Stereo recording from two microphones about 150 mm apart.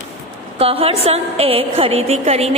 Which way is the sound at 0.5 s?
40° right (ahead or behind).